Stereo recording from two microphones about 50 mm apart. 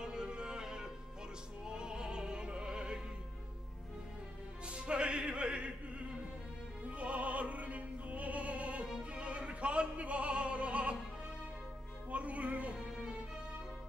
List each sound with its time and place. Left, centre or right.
0.0 s music: centre
4.6 s music: right
6.9 s opera: right
12.1 s music: right